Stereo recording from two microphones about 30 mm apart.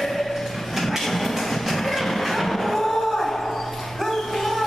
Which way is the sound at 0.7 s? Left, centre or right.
Centre.